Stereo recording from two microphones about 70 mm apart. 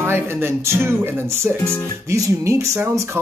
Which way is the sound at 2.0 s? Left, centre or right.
Right.